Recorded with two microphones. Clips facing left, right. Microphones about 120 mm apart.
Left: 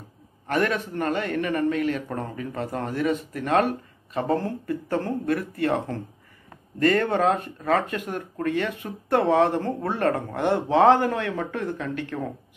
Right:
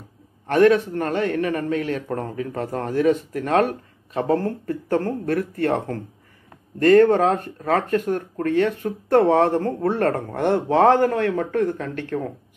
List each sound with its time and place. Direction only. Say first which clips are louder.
0.5 s a man's voice: right 9 dB; 50° right (ahead or behind)
4.3 s speech: right 4 dB; 15° left (ahead or behind)
4.6 s a man's voice: right 4 dB; 50° right (ahead or behind)